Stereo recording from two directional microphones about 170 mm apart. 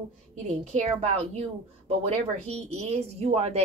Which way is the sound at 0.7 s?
40° right (ahead or behind).